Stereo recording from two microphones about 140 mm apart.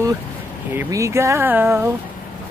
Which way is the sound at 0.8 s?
20° right (ahead or behind).